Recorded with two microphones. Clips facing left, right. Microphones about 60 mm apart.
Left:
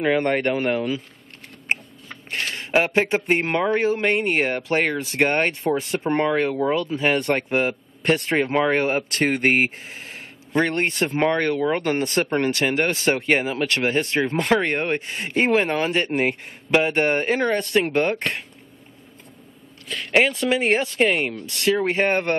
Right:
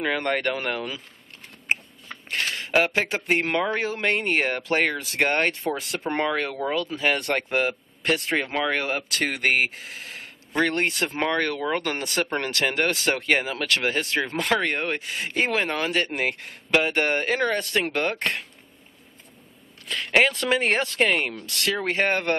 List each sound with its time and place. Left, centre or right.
0.0 s speech: centre
2.2 s speech: centre
4.9 s speech: left
5.2 s speech: centre
8.1 s speech: left
10.5 s speech: centre
10.9 s speech: left
19.9 s speech: centre
21.5 s speech: left
21.7 s speech: centre